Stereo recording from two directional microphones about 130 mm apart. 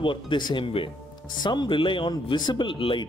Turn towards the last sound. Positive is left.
turn(degrees=40)  # may be behind; listen again after turning